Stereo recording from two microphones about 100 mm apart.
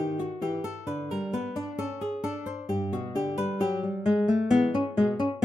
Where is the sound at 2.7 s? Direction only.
40° left (ahead or behind).